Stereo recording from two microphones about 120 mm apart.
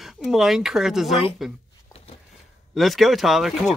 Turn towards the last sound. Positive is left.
turn(degrees=0)  # may be behind; listen again after turning